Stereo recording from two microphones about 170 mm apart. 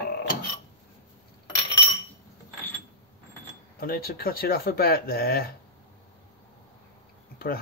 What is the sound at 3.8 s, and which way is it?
Speech, 60° left (ahead or behind).